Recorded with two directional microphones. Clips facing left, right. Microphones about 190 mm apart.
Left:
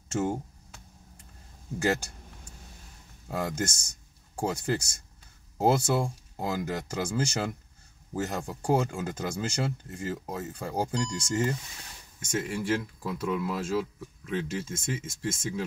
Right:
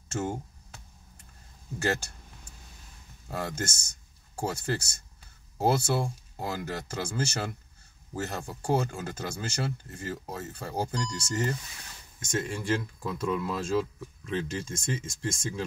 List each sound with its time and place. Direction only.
1.8 s speech: 15° left (ahead or behind)
3.3 s speech: 15° left (ahead or behind)